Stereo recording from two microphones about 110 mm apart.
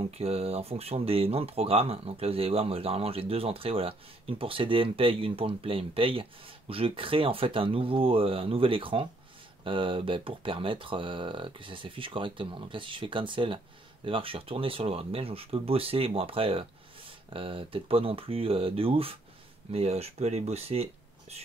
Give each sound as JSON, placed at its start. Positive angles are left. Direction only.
{"t": 0.2, "sound": "speech", "side_deg": -65}
{"t": 19.7, "sound": "speech", "side_deg": -70}